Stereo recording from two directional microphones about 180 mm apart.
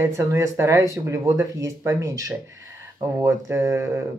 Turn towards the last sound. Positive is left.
turn(degrees=-15)  # may be behind; listen again after turning